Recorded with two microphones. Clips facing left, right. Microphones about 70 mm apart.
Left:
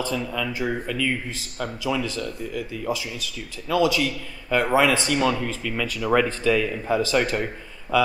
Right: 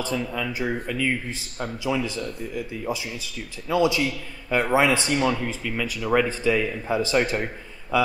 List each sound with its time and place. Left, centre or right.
0.1 s speech: centre
3.6 s speech: centre